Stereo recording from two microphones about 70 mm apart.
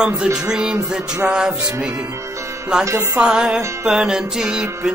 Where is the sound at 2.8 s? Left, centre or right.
Right.